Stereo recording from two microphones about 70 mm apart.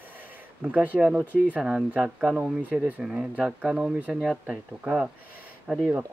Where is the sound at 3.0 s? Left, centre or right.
Centre.